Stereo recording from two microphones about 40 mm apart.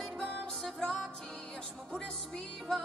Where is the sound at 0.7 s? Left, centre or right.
Left.